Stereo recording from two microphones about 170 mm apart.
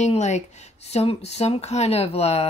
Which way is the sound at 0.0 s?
40° left (ahead or behind).